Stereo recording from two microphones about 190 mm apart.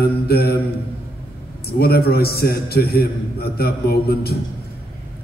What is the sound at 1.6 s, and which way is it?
A man's voice, 55° left (ahead or behind).